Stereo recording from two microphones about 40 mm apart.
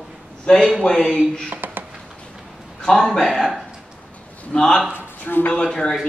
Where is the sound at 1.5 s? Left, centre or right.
Right.